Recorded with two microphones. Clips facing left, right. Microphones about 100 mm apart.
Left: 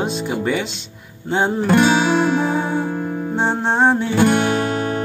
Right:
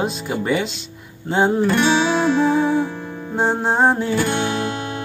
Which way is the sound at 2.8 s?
50° left (ahead or behind).